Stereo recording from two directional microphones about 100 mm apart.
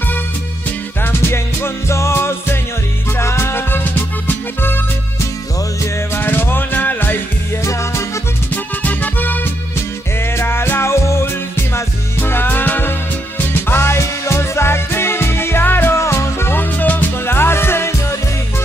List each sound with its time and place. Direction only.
1.0 s music: 25° left (ahead or behind)
6.1 s music: 20° left (ahead or behind)
7.6 s music: 30° left (ahead or behind)
8.8 s music: 15° left (ahead or behind)